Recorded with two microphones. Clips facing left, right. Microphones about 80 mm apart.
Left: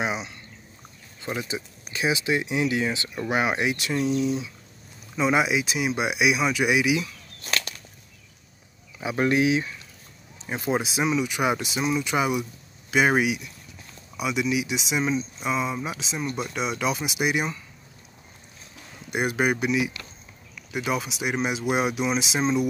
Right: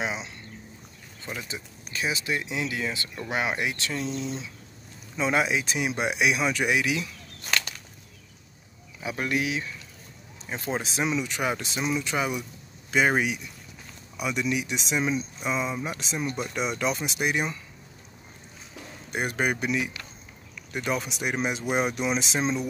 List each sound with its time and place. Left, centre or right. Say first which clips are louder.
0.0 s a sound: left 3 dB; centre
1.2 s speech: left 6 dB; centre
9.0 s speech: left 6 dB; left
10.4 s speech: left 5 dB; centre
19.0 s speech: left 3 dB; centre